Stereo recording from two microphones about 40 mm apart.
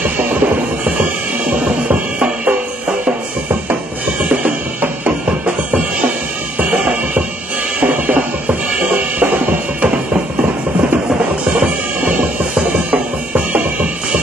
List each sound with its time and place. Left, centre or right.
1.9 s music: right
4.3 s drum: right
7.8 s drum: right
11.6 s music: right
12.9 s drum kit: right